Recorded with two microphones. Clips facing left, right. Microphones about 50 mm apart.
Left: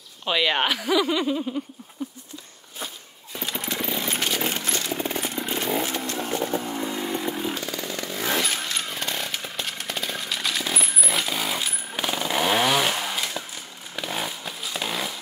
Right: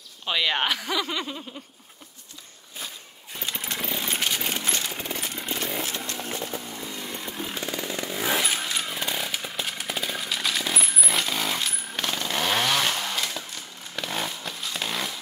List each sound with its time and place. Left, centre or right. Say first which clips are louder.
0.2 s speech: left 2 dB; centre
3.3 s a sound: left 3 dB; centre
5.2 s chainsaw: left 4 dB; centre
5.9 s chainsaw: left 4 dB; left
6.3 s vehicle: left 7 dB; left
6.9 s chainsaw: left 7 dB; left
7.5 s chainsaw: even; right; by 13.4 s centre
13.9 s a sound: left 1 dB; centre